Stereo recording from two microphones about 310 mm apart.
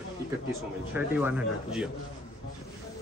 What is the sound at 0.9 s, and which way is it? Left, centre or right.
Speech, centre.